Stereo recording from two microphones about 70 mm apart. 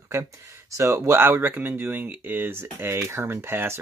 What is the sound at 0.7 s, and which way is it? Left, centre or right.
Speech, right.